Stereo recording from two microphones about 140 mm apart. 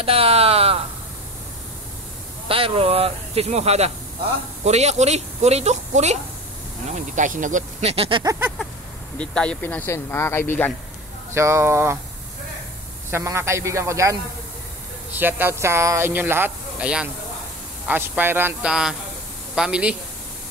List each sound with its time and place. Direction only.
0.0 s a sound: 45° right (ahead or behind)
2.4 s speech: 40° right (ahead or behind)
6.9 s speech: 65° right (ahead or behind)
7.9 s speech: 40° right (ahead or behind)
9.2 s speech: 10° left (ahead or behind)
11.3 s speech: 20° right (ahead or behind)
13.1 s speech: 20° right (ahead or behind)
15.1 s speech: 15° right (ahead or behind)